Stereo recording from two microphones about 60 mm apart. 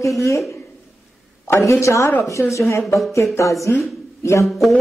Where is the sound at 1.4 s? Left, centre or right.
Left.